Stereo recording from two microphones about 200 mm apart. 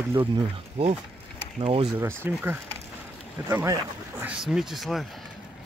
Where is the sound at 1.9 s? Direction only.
10° right (ahead or behind).